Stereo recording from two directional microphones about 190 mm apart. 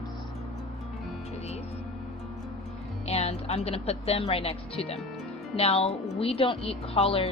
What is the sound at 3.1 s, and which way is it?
A woman's voice, 35° left (ahead or behind).